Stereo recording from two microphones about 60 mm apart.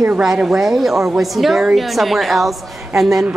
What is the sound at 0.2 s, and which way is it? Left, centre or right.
A woman's voice, centre.